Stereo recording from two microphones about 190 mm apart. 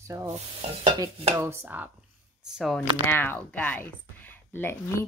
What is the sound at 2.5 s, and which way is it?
Speech, centre (ahead or behind).